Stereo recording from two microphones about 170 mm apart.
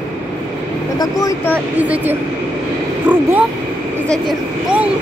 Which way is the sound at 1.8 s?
10° right (ahead or behind).